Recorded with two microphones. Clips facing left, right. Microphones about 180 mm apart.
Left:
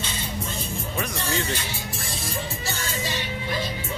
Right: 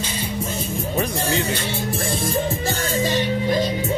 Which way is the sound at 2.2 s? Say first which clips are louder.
Right 8 dB; 50° right (ahead or behind).